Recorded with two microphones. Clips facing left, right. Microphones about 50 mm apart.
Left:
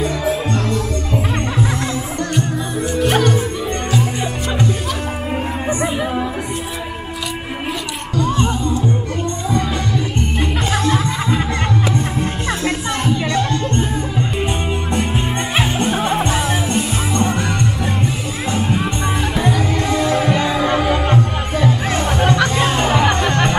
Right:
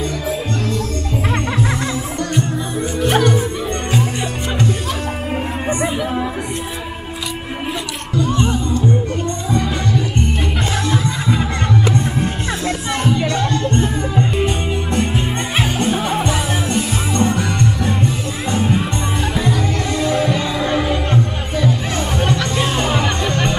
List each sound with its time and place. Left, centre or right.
3.0 s music: centre
8.5 s music: left
13.0 s music: centre
19.9 s music: centre